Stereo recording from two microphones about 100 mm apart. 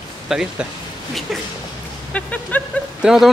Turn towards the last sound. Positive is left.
turn(degrees=-5)  # may be behind; listen again after turning